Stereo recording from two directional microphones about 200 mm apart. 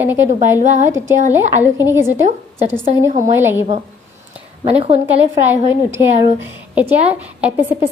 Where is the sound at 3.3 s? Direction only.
10° right (ahead or behind).